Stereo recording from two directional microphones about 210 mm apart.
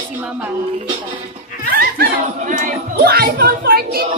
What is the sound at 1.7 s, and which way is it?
Speech, 45° right (ahead or behind).